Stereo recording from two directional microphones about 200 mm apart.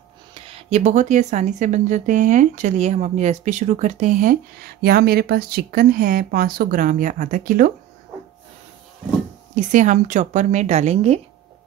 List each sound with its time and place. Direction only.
0.3 s speech: 30° right (ahead or behind)
9.6 s speech: 40° right (ahead or behind)